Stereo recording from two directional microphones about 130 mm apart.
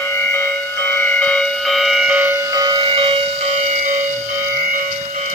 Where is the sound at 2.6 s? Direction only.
40° right (ahead or behind); by 4.1 s 90° right.